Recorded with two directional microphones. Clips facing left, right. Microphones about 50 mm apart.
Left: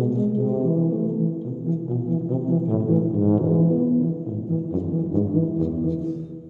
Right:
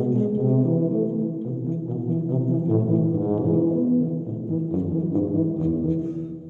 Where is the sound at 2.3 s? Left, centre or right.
Centre.